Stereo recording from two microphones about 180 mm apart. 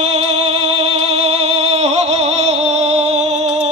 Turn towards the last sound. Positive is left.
turn(degrees=-35)  # may be behind; listen again after turning